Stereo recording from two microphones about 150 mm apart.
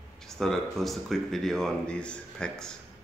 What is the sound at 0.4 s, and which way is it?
Speech, centre (ahead or behind).